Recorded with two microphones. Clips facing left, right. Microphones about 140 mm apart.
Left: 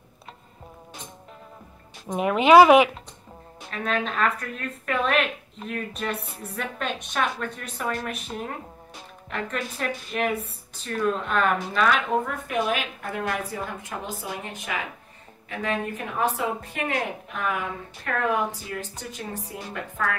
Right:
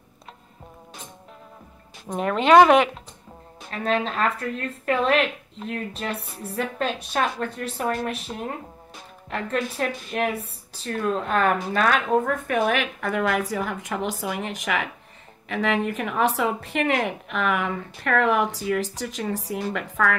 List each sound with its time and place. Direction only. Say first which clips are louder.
2.1 s speech: left 1 dB; 5° left (ahead or behind)
3.7 s a woman's voice: right 3 dB; 35° right (ahead or behind)
9.3 s a woman's voice: right 4 dB; 35° right (ahead or behind); by 20.2 s 90° right